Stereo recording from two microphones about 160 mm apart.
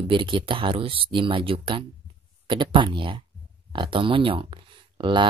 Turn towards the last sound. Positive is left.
turn(degrees=-30)  # may be behind; listen again after turning